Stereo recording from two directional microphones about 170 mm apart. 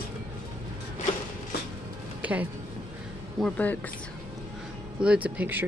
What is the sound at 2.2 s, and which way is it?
Music, 10° right (ahead or behind).